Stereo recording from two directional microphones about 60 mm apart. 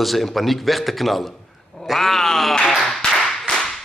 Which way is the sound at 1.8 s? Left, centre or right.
Centre.